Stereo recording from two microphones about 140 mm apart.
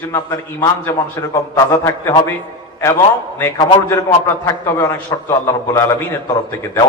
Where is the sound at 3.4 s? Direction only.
20° left (ahead or behind).